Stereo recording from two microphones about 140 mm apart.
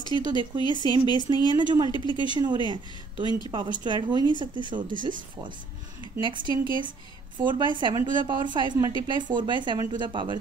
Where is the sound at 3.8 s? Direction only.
35° right (ahead or behind).